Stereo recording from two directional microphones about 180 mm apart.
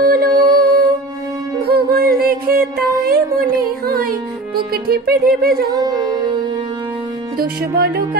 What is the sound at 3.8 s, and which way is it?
Music, 55° right (ahead or behind).